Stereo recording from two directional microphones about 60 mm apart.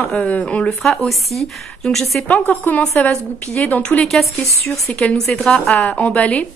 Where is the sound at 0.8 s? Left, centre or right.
Centre.